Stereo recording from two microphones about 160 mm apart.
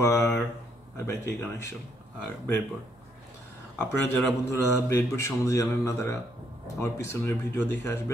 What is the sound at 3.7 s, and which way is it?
A man's voice, 10° left (ahead or behind).